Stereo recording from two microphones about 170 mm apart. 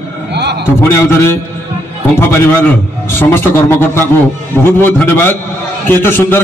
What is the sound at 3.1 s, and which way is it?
A man's voice, 10° left (ahead or behind).